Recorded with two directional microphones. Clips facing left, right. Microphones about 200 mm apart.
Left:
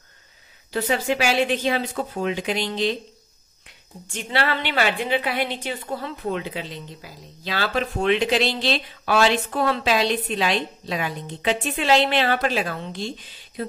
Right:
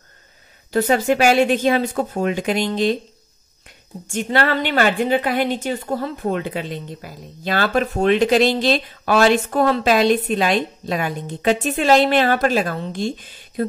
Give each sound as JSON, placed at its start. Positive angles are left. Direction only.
{"t": 0.7, "sound": "a woman's voice", "side_deg": -45}